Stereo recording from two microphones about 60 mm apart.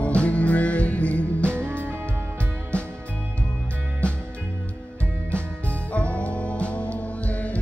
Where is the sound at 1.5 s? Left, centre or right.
Right.